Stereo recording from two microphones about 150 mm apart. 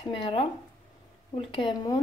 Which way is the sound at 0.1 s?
35° left (ahead or behind).